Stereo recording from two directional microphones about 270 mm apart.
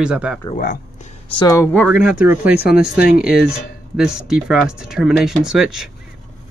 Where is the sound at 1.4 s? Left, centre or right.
Centre.